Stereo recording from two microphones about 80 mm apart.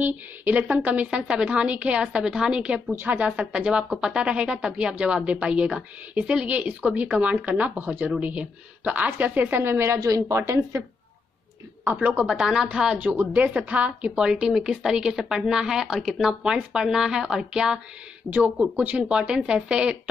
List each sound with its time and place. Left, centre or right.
0.0 s a woman's voice: right
9.9 s a woman's voice: right
11.8 s a woman's voice: right